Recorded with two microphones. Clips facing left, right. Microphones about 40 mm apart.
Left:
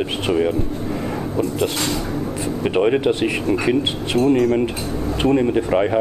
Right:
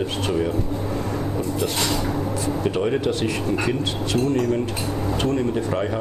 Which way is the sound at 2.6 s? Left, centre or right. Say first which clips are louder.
Left 6 dB; left.